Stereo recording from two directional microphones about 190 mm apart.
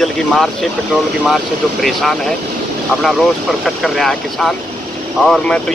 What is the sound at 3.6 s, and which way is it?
Speech, centre (ahead or behind).